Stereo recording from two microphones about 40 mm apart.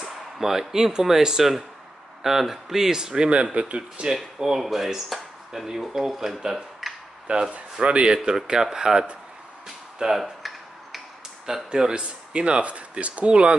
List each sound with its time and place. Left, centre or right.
0.0 s speech: centre
3.5 s speech: right
4.0 s speech: centre
7.2 s speech: right
11.4 s speech: centre
11.9 s speech: right